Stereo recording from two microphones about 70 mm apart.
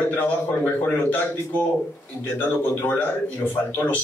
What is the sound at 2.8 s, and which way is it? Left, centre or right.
A man's voice, left.